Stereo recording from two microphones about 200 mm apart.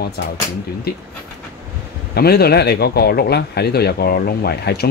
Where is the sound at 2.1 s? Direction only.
50° left (ahead or behind).